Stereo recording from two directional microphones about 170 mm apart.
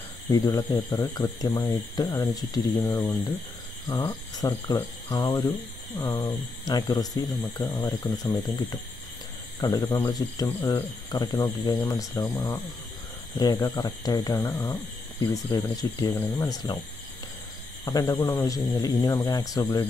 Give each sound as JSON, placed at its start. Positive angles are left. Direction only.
{"t": 0.3, "sound": "speech", "side_deg": 20}
{"t": 9.6, "sound": "speech", "side_deg": 25}
{"t": 17.8, "sound": "speech", "side_deg": 20}